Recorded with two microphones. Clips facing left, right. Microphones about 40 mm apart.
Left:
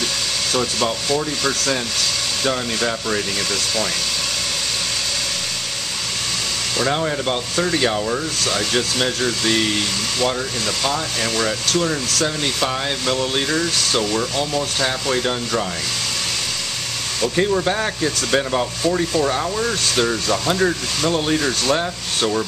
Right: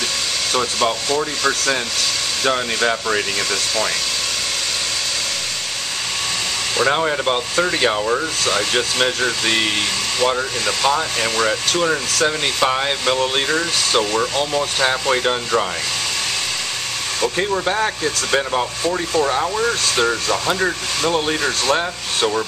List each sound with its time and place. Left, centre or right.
0.5 s speech: centre
2.4 s speech: centre
6.8 s speech: centre
17.2 s speech: centre